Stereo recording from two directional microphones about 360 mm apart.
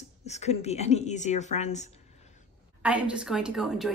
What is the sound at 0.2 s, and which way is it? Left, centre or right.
A woman's voice, centre.